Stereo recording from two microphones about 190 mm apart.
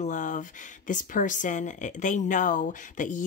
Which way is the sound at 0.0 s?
45° left (ahead or behind).